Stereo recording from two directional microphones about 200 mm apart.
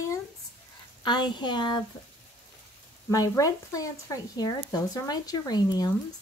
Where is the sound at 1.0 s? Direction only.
25° left (ahead or behind).